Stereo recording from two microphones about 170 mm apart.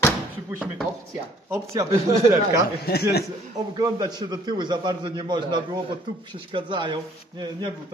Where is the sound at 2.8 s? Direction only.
70° left (ahead or behind).